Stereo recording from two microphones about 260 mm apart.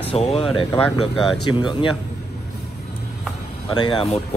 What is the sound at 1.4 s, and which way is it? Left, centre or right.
Speech, centre.